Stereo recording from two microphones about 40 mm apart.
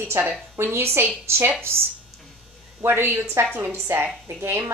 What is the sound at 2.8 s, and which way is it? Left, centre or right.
Speech, right.